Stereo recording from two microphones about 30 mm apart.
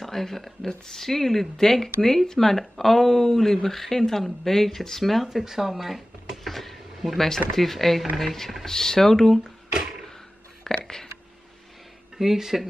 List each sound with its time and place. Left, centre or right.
0.0 s speech: centre
0.7 s speech: left
1.0 s speech: centre
5.2 s speech: centre
6.4 s a sound: centre
7.2 s speech: centre
10.6 s a sound: centre
12.2 s speech: centre